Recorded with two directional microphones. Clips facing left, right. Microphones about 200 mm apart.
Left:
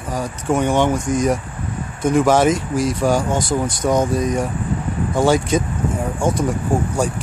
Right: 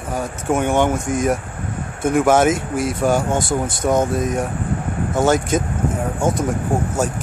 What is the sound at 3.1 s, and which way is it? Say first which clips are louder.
Speech: even; 25° right (ahead or behind).